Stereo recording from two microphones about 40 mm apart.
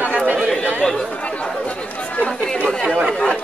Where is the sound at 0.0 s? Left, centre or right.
Right.